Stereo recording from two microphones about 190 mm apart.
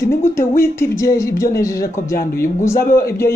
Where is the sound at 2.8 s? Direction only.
50° left (ahead or behind).